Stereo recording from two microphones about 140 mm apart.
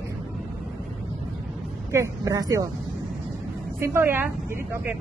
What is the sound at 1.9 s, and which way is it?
Speech, 20° right (ahead or behind).